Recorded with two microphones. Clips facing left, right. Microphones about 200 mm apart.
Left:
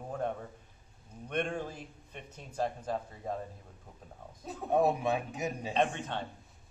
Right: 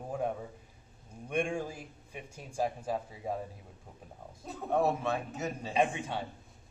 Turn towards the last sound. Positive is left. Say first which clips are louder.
# right 1 dB
turn(degrees=-10)  # may be behind; listen again after turning